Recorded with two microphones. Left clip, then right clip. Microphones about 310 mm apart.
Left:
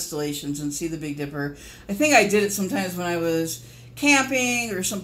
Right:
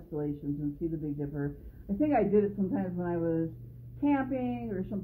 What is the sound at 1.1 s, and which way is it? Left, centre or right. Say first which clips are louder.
A woman's voice: left 7 dB; left.